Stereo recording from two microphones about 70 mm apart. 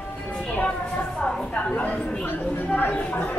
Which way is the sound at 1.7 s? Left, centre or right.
Centre.